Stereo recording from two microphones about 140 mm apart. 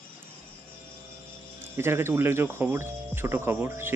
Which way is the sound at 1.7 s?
20° right (ahead or behind).